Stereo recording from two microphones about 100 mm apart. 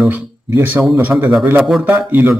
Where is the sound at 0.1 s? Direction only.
20° right (ahead or behind).